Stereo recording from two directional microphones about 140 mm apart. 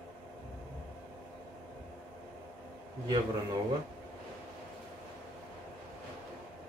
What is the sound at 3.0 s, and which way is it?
Speech, 30° right (ahead or behind).